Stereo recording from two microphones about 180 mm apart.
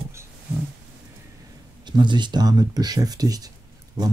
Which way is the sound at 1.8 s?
25° right (ahead or behind).